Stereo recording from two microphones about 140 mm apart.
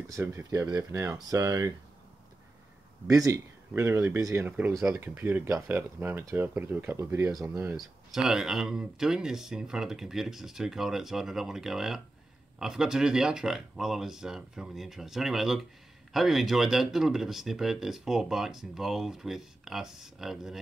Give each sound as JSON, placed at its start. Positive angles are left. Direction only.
{"t": 0.1, "sound": "speech", "side_deg": -20}
{"t": 3.1, "sound": "speech", "side_deg": -20}
{"t": 7.7, "sound": "speech", "side_deg": -5}